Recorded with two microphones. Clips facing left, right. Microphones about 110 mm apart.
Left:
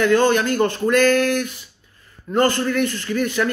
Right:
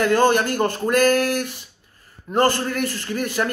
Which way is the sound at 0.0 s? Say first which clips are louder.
Left 1 dB; 40° right (ahead or behind).